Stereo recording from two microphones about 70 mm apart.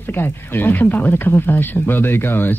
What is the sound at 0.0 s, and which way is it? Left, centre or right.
Speech, left.